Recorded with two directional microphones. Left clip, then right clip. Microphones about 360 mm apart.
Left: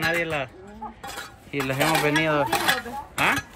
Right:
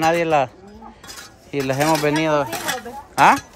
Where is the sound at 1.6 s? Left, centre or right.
Centre.